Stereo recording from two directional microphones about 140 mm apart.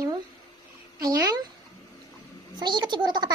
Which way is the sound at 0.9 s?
25° right (ahead or behind).